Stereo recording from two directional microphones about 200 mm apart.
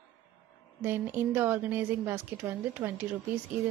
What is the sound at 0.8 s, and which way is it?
A woman's voice, 10° right (ahead or behind).